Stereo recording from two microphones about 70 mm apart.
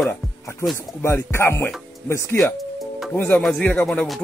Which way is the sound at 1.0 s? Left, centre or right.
Left.